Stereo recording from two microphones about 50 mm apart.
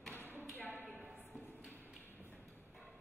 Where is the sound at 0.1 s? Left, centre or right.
Left.